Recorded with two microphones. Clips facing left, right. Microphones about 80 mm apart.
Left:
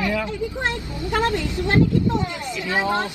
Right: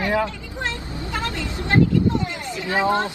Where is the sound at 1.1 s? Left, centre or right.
Left.